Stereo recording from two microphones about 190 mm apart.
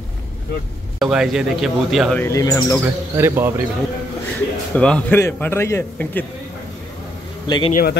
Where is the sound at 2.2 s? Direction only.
15° left (ahead or behind).